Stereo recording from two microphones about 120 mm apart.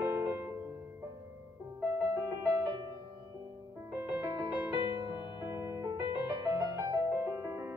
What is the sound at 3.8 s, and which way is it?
Music, 20° right (ahead or behind).